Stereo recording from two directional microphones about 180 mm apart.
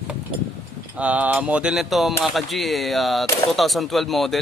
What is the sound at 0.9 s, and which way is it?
Mantra, 10° right (ahead or behind).